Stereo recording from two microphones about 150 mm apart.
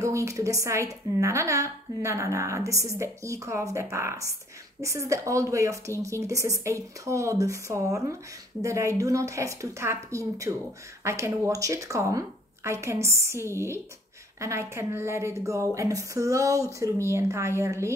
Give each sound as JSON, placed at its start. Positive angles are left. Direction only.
{"t": 0.0, "sound": "a woman's voice", "side_deg": -20}